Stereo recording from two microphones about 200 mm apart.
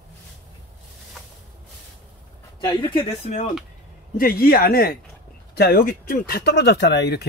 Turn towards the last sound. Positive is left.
turn(degrees=55)  # may be behind; listen again after turning